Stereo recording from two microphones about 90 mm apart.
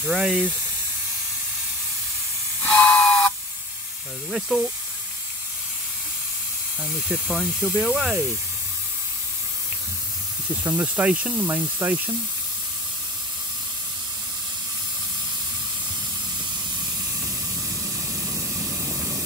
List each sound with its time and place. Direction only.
0.0 s speech: 5° right (ahead or behind)
2.6 s steam: 15° left (ahead or behind)
4.3 s speech: 10° right (ahead or behind)
6.8 s speech: 5° right (ahead or behind)
10.6 s speech: 20° right (ahead or behind)